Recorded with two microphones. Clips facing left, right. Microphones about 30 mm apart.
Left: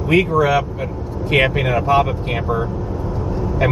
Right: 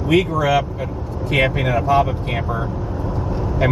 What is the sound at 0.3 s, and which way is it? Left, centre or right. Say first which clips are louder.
Speech: left 2 dB; centre.